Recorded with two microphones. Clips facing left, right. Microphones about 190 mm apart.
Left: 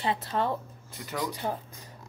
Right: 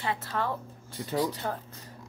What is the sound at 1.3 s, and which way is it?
Speech, 15° left (ahead or behind).